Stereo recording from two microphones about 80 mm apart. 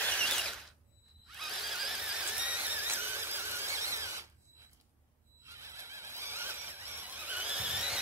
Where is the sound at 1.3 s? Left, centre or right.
Centre; by 4.2 s right.